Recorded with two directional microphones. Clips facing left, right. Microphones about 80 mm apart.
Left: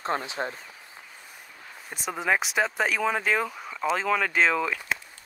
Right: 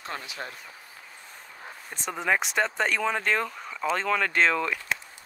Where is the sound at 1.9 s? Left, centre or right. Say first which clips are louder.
Left 1 dB; centre.